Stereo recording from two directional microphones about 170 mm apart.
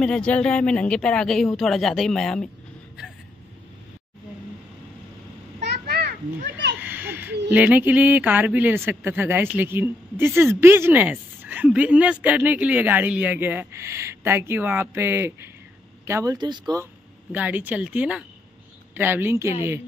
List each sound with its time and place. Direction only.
0.0 s speech: 5° left (ahead or behind)
5.6 s children playing: 75° right (ahead or behind)
6.8 s a sound: 10° right (ahead or behind)
7.4 s speech: 10° right (ahead or behind); by 16.8 s 25° right (ahead or behind)
17.3 s speech: 10° right (ahead or behind)